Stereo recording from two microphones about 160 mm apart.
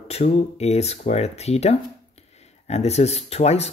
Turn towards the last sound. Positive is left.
turn(degrees=40)  # may be behind; listen again after turning